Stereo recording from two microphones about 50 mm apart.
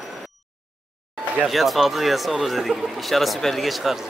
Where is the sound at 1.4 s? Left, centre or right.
Centre.